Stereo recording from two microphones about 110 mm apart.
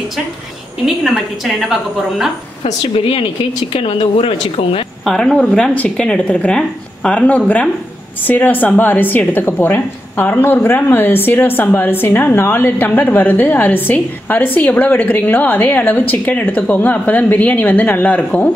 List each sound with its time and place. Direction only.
0.8 s a woman's voice: centre (ahead or behind)
2.6 s speech: 60° left (ahead or behind)
5.0 s speech: 5° left (ahead or behind)